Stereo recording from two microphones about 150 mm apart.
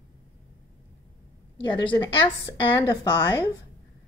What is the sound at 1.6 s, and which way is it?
A woman's voice, 30° left (ahead or behind).